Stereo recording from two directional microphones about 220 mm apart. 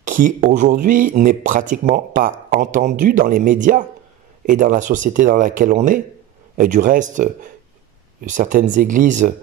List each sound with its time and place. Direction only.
0.0 s speech: 35° right (ahead or behind)